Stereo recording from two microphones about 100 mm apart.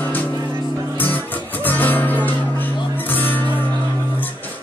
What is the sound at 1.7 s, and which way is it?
Music, 20° left (ahead or behind).